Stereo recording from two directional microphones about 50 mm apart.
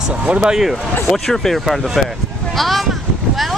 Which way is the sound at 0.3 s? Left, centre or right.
Centre.